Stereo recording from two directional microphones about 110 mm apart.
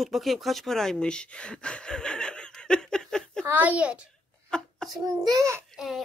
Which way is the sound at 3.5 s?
15° right (ahead or behind).